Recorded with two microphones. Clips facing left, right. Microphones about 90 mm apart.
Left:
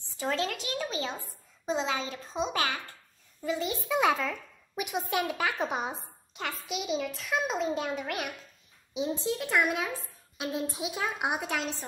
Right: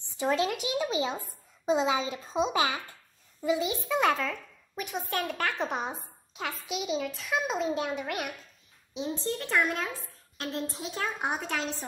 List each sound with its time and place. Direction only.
0.2 s a child's voice: 20° right (ahead or behind)
3.4 s a child's voice: 5° right (ahead or behind)